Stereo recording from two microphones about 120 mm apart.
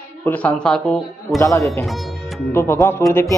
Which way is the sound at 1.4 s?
20° left (ahead or behind).